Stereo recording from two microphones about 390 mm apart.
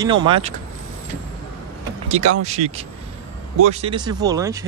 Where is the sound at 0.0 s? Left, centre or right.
Centre.